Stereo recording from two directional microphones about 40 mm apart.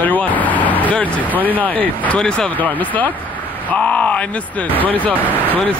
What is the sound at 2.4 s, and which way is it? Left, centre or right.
Speech, left.